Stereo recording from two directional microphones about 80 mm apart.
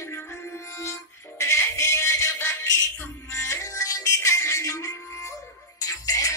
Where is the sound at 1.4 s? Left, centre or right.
Left.